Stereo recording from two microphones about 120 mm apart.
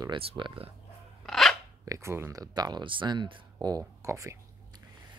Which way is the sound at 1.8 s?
25° right (ahead or behind).